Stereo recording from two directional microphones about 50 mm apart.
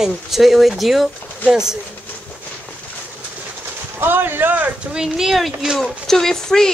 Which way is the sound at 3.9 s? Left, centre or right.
Right.